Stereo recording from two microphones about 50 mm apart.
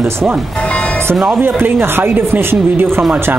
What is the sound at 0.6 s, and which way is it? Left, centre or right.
Music, left.